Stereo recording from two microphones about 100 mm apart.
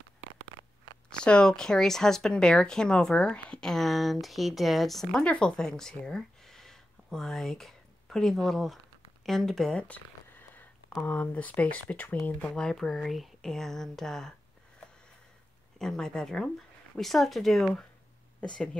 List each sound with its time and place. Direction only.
1.1 s speech: 10° left (ahead or behind)
9.2 s a sound: centre (ahead or behind); by 10.7 s 20° left (ahead or behind)
11.0 s speech: 15° left (ahead or behind)
15.8 s speech: 5° left (ahead or behind)